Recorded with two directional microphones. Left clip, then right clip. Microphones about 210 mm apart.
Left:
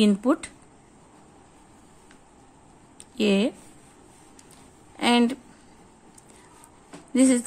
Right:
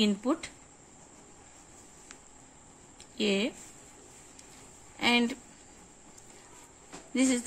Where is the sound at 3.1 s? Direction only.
25° left (ahead or behind).